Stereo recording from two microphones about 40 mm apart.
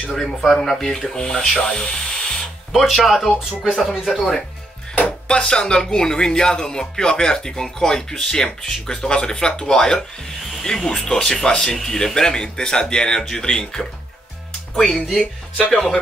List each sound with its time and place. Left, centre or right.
0.1 s speech: centre
2.7 s speech: centre
5.3 s speech: left